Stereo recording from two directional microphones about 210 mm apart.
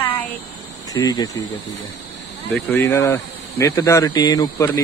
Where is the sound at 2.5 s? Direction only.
10° left (ahead or behind).